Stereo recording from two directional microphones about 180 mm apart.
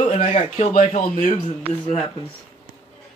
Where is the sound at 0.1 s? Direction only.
35° left (ahead or behind).